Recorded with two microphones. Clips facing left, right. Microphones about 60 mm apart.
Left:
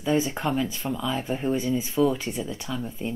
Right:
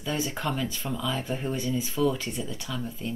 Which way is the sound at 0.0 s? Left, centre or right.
Centre.